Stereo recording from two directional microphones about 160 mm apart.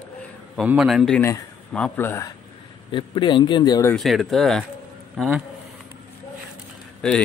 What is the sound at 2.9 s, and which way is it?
Speech, 30° left (ahead or behind).